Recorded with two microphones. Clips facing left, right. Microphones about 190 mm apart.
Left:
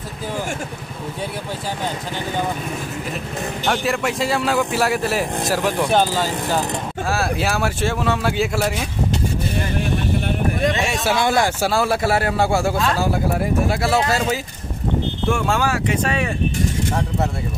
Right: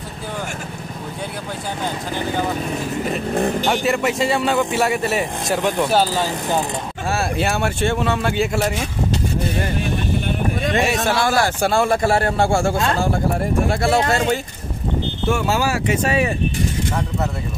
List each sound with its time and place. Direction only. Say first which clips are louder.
3.6 s a man's voice: right 2 dB; centre (ahead or behind)
6.1 s speech: even; 15° right (ahead or behind)
7.1 s a man's voice: right 1 dB; centre (ahead or behind)
11.1 s speech: even; 20° left (ahead or behind)
11.6 s a man's voice: right 2 dB; 5° left (ahead or behind)